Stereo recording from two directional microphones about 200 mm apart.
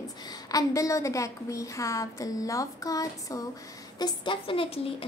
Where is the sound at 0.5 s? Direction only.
15° left (ahead or behind).